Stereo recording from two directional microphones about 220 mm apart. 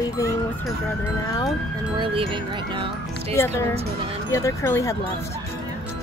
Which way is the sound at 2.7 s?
25° right (ahead or behind).